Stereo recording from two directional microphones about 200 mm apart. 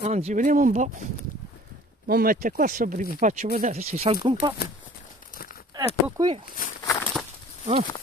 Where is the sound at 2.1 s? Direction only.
45° right (ahead or behind); by 4.5 s 25° right (ahead or behind).